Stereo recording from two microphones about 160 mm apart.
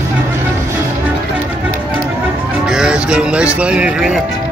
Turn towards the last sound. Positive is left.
turn(degrees=-5)  # may be behind; listen again after turning